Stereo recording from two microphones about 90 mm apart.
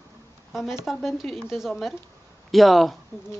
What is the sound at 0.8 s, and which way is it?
Speech, centre (ahead or behind).